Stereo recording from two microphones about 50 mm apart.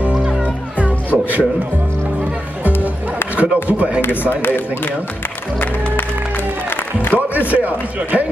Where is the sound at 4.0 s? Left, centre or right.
Left.